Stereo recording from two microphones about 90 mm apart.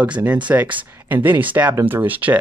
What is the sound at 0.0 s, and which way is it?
Speech, 15° right (ahead or behind).